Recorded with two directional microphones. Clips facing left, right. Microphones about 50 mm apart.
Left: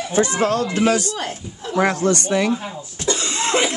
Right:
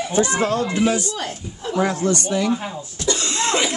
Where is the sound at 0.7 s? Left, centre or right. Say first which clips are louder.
Left 2 dB; left.